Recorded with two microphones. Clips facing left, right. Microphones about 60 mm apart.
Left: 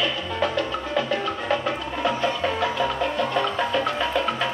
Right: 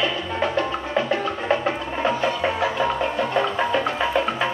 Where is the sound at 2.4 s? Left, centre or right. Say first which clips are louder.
Right 2 dB; centre.